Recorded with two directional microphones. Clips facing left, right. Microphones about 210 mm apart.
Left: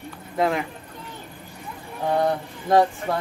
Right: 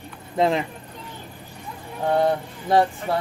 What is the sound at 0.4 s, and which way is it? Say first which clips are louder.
Speech: right 2 dB; 25° right (ahead or behind).